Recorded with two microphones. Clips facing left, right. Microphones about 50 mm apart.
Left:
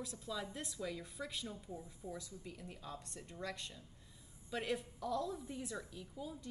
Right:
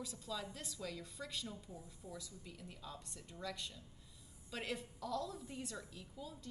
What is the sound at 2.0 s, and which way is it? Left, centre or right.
Speech, left.